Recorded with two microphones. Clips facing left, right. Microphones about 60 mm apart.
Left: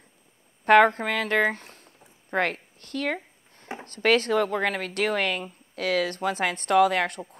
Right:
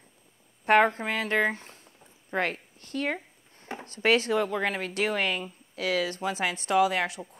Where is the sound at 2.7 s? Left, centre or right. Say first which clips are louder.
Even; left.